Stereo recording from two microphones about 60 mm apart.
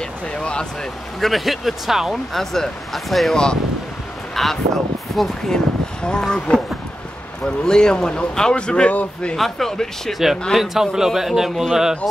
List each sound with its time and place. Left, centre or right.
0.3 s speech: centre
1.2 s a man's voice: centre
2.3 s a man's voice: centre
4.4 s a man's voice: centre
9.4 s a man's voice: centre